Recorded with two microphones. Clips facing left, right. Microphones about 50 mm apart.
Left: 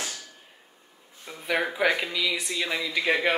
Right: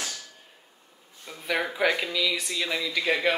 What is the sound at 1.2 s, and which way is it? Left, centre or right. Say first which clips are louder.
Speech: left 1 dB; centre.